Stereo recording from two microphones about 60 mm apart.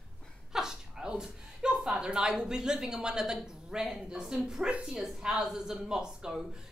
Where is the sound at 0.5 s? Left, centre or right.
Centre.